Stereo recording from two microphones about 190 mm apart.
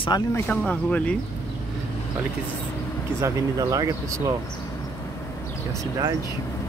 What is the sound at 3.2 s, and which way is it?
Speech, 15° right (ahead or behind).